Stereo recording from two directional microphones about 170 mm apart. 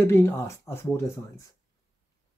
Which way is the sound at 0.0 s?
15° left (ahead or behind).